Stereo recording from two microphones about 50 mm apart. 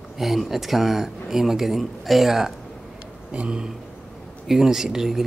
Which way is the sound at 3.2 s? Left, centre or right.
Right.